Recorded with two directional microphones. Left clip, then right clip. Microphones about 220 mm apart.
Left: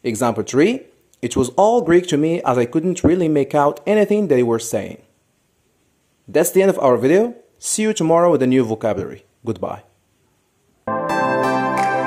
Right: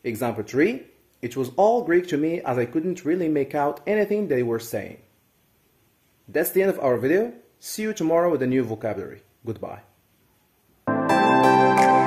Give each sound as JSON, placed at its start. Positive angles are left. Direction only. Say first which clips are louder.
{"t": 0.0, "sound": "speech", "louder": "left 7 dB", "side_deg": 35}
{"t": 6.3, "sound": "speech", "louder": "left 7 dB", "side_deg": 35}
{"t": 11.1, "sound": "music", "louder": "right 2 dB", "side_deg": 0}